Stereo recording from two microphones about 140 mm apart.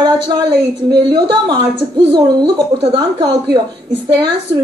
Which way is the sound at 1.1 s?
30° right (ahead or behind).